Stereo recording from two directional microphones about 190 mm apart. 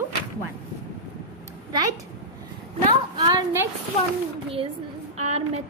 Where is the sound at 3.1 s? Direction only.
25° right (ahead or behind).